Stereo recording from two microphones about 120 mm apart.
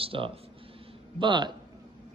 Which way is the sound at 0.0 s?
50° right (ahead or behind).